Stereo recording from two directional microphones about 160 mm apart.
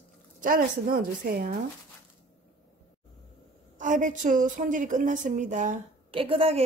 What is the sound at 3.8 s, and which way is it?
A woman's voice, 55° right (ahead or behind).